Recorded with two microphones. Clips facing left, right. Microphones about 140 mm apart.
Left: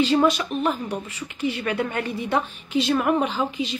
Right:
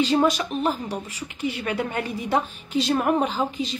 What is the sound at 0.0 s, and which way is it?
A woman's voice, 40° right (ahead or behind).